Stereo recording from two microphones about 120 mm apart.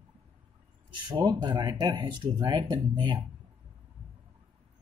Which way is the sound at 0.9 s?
35° right (ahead or behind).